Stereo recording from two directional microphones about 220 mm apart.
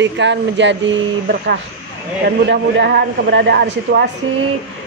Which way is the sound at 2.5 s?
50° right (ahead or behind).